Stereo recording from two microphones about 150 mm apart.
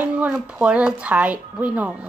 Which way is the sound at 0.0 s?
10° right (ahead or behind).